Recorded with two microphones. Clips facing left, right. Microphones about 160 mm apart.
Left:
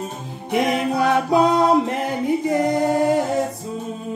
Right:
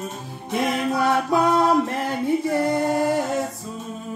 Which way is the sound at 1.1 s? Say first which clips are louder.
Left 3 dB; 20° left (ahead or behind).